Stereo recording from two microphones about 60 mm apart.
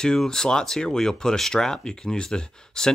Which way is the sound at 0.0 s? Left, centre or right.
Centre.